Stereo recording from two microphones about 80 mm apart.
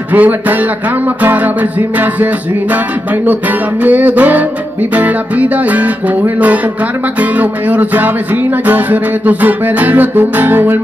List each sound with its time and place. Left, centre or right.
0.1 s music: right